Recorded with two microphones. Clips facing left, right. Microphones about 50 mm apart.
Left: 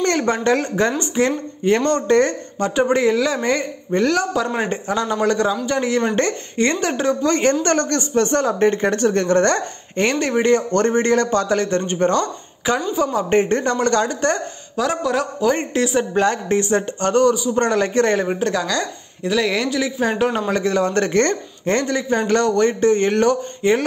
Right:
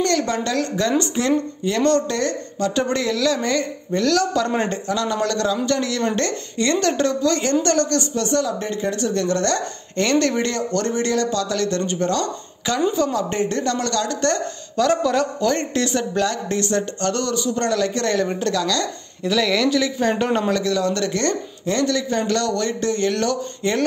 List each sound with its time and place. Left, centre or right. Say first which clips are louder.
0.0 s speech: left 2 dB; left
2.7 s speech: left 7 dB; centre
4.8 s speech: left 3 dB; left
7.2 s speech: left 2 dB; left
10.1 s speech: left 3 dB; centre
12.9 s a man's voice: left 1 dB; centre
13.3 s speech: left 5 dB; left
14.8 s a man's voice: right 2 dB; centre
16.1 s a man's voice: left 4 dB; left
17.6 s speech: left 4 dB; left
19.2 s a man's voice: even; centre
20.5 s speech: left 2 dB; left
21.8 s speech: left 1 dB; left